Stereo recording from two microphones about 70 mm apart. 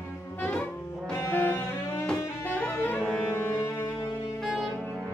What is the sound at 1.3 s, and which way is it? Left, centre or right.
Music, left.